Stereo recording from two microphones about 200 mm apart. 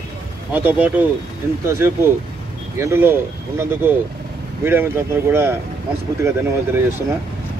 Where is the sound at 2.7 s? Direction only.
10° right (ahead or behind).